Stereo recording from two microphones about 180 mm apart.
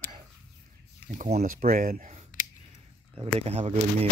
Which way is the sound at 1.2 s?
40° right (ahead or behind).